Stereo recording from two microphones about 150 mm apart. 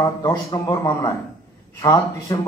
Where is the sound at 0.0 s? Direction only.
25° left (ahead or behind).